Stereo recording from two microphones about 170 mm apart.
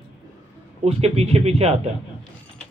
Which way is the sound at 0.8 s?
35° right (ahead or behind).